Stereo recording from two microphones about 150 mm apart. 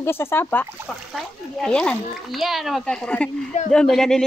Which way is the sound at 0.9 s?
Centre (ahead or behind).